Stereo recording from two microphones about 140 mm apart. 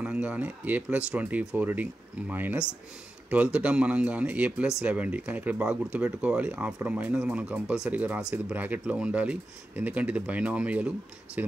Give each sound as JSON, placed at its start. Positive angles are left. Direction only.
{"t": 0.0, "sound": "speech", "side_deg": -10}